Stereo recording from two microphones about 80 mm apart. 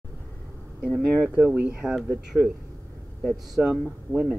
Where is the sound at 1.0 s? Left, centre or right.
Centre.